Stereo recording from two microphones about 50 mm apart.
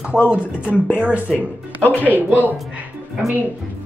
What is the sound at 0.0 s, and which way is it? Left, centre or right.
Speech, right.